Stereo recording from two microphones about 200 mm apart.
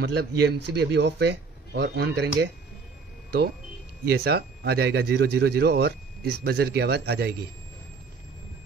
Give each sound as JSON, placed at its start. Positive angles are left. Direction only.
{"t": 0.0, "sound": "speech", "side_deg": -55}
{"t": 4.0, "sound": "speech", "side_deg": -55}